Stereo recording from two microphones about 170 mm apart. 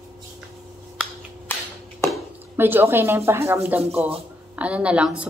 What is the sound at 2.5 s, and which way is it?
Speech, 10° right (ahead or behind).